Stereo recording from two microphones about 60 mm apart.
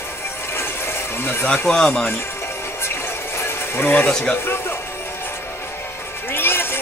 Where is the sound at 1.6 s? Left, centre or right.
Centre.